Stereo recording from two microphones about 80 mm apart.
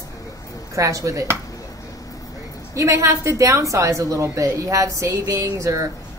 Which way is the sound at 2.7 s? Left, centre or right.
Right.